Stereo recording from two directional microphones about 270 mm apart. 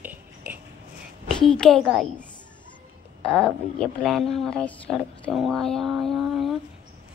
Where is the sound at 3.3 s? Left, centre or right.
Centre.